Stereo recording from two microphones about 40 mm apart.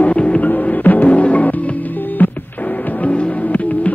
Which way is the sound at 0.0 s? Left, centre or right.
Left.